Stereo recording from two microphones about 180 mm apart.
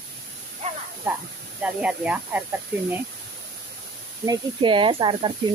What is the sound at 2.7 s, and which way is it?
Speech, 65° right (ahead or behind).